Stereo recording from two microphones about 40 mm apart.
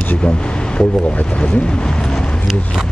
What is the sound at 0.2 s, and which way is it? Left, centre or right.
Speech, left.